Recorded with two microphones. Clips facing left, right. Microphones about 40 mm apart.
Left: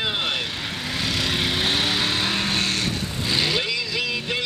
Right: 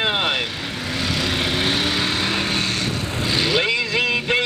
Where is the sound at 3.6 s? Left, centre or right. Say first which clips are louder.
Right 6 dB; right.